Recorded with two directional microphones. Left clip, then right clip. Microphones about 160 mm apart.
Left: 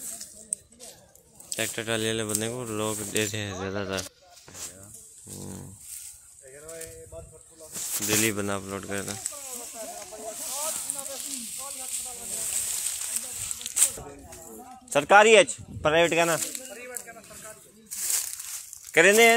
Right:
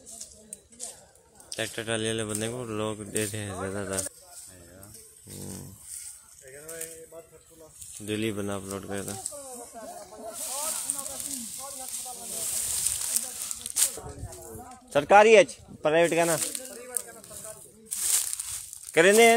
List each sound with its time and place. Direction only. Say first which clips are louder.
1.5 s speech: left 2 dB; 10° left (ahead or behind)
8.1 s speech: left 4 dB; 5° left (ahead or behind)
13.7 s a sound: left 1 dB; 10° right (ahead or behind)
14.9 s speech: even; centre (ahead or behind)
17.9 s a sound: right 1 dB; centre (ahead or behind)
18.9 s speech: left 1 dB; 10° right (ahead or behind)